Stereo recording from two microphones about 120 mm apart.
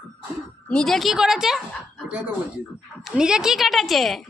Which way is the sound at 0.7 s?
5° left (ahead or behind).